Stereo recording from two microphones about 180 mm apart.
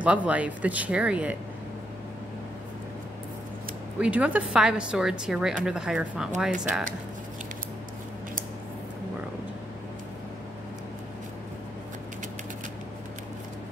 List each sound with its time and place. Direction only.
0.0 s speech: 5° right (ahead or behind)
4.0 s a woman's voice: 5° right (ahead or behind)